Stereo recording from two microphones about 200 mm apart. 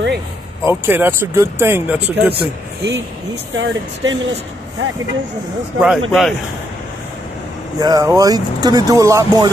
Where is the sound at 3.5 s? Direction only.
70° right (ahead or behind).